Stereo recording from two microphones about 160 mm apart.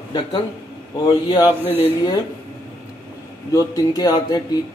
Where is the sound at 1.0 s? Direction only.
25° left (ahead or behind).